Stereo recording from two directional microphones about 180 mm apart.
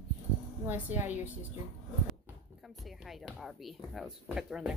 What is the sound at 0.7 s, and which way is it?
Speech, 10° right (ahead or behind).